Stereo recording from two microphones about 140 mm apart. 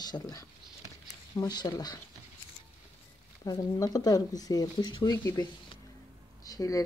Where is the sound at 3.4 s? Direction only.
25° left (ahead or behind).